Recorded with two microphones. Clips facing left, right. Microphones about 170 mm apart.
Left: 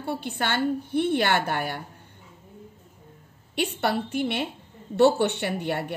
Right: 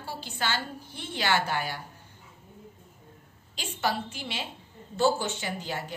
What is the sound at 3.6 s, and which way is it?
Speech, 60° left (ahead or behind).